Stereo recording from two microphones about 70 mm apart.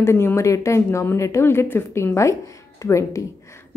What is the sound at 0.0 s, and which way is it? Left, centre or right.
A woman's voice, left.